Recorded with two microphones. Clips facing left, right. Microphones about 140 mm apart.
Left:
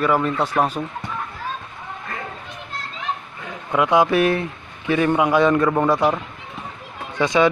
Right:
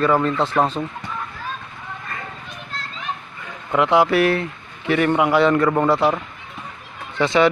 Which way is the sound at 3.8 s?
15° left (ahead or behind).